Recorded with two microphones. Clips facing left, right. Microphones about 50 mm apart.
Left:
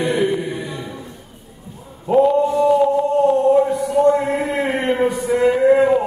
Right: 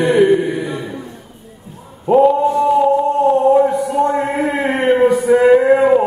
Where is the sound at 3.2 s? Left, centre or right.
Right.